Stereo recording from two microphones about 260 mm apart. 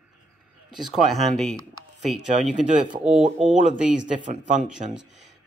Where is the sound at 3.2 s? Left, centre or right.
Right.